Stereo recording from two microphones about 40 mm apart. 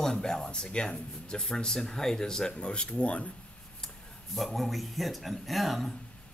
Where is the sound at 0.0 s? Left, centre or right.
Centre; by 3.3 s left.